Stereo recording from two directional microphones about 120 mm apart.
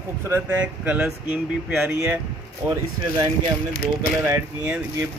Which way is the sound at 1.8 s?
20° right (ahead or behind).